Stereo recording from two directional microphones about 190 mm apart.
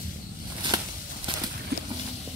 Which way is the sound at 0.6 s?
25° right (ahead or behind).